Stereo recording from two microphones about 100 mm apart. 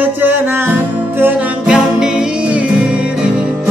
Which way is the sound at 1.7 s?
5° right (ahead or behind).